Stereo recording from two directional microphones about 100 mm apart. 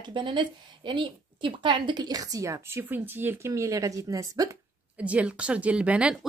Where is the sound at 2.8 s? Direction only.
20° right (ahead or behind); by 4.5 s 35° right (ahead or behind).